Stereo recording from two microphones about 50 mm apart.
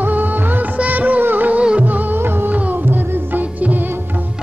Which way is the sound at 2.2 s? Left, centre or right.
Right.